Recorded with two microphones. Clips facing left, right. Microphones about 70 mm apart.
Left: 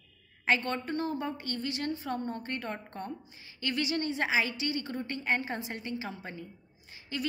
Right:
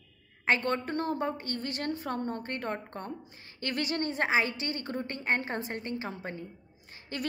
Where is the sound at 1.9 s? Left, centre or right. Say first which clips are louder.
Right 1 dB; right.